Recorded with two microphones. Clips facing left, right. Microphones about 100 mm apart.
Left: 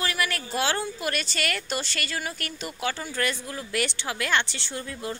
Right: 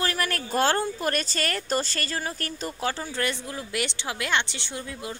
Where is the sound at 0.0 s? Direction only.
40° right (ahead or behind).